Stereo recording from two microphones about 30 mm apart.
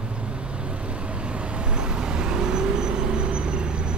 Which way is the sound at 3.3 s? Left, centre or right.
Right.